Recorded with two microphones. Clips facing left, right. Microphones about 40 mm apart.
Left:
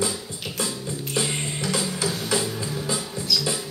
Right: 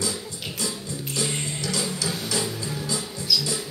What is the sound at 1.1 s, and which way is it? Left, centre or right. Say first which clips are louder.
Music: left 2 dB; left.